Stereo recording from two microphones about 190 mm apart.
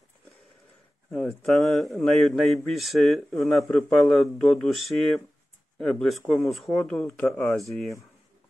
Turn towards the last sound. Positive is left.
turn(degrees=0)  # may be behind; listen again after turning